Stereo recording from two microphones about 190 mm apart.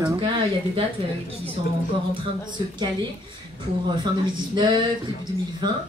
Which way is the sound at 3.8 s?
25° right (ahead or behind).